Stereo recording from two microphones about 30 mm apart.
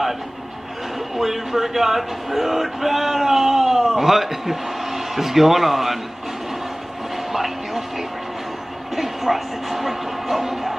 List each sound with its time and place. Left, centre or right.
0.9 s speech: centre
7.3 s music: centre
8.9 s speech: centre